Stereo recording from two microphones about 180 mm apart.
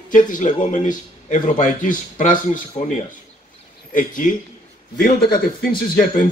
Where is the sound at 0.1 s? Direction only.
45° left (ahead or behind).